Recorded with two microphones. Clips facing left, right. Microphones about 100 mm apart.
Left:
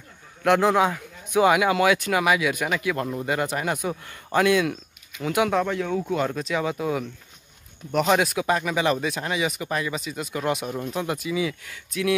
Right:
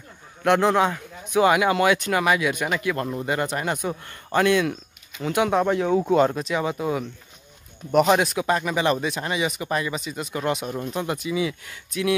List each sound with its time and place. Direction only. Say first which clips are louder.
0.5 s speech: even; 5° left (ahead or behind)
5.5 s speech: right 4 dB; 25° right (ahead or behind)
6.3 s speech: right 1 dB; 5° right (ahead or behind)
8.2 s speech: right 1 dB; 5° left (ahead or behind)